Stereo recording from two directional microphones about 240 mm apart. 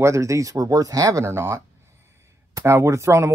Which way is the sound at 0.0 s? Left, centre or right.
Centre.